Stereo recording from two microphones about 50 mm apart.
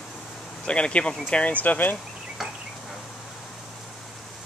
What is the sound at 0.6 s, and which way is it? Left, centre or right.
Speech, left.